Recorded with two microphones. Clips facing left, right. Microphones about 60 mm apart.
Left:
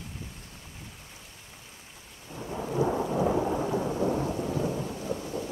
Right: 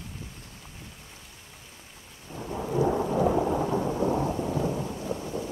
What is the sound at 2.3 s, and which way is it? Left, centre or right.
Thunder, centre.